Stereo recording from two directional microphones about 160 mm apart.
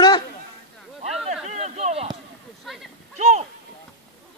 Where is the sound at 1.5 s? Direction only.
45° right (ahead or behind).